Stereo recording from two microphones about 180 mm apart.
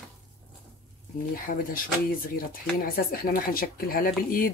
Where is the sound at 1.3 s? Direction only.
50° left (ahead or behind).